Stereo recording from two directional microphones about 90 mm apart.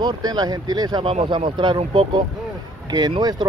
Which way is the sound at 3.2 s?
50° right (ahead or behind).